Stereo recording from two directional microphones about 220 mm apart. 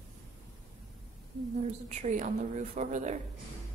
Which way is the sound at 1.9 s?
35° right (ahead or behind).